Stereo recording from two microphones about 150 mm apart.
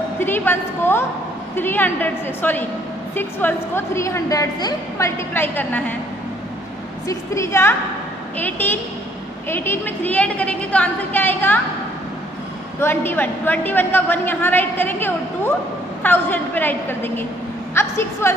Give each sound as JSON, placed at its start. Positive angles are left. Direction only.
{"t": 0.2, "sound": "a woman's voice", "side_deg": 15}
{"t": 7.1, "sound": "a woman's voice", "side_deg": 20}
{"t": 12.8, "sound": "a woman's voice", "side_deg": 15}